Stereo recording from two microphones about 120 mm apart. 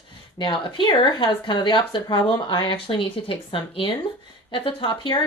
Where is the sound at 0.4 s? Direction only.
40° left (ahead or behind).